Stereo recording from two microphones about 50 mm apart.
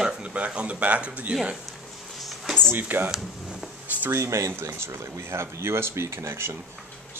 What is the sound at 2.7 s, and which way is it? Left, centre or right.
Speech, right.